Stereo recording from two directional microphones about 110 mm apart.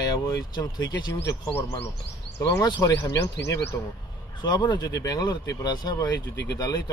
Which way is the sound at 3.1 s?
25° left (ahead or behind).